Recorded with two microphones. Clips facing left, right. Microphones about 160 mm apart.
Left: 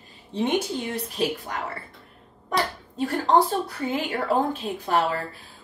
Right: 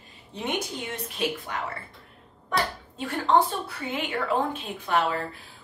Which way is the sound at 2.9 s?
35° left (ahead or behind).